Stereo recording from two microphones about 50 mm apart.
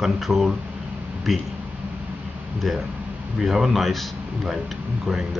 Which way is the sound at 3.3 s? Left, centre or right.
Centre.